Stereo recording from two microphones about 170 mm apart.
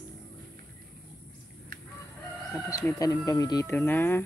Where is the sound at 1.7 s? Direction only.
60° right (ahead or behind).